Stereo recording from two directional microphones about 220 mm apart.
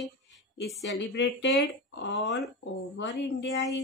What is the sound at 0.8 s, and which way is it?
Speech, 55° left (ahead or behind).